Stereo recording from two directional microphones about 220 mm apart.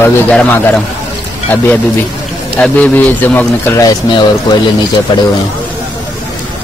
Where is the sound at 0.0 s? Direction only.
5° left (ahead or behind).